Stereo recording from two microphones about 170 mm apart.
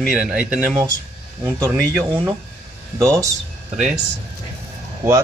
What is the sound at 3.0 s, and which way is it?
Speech, 20° right (ahead or behind).